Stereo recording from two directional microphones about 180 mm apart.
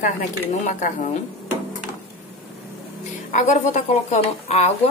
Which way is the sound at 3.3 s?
40° left (ahead or behind).